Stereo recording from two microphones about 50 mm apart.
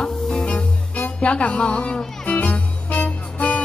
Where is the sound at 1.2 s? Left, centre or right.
Left.